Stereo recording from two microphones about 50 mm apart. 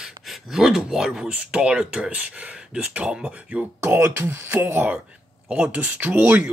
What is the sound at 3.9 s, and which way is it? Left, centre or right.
Speech, right.